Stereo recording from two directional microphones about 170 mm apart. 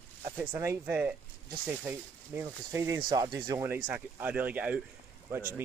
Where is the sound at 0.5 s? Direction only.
15° right (ahead or behind).